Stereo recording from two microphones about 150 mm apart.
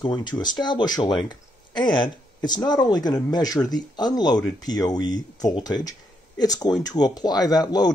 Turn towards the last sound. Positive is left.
turn(degrees=25)  # may be behind; listen again after turning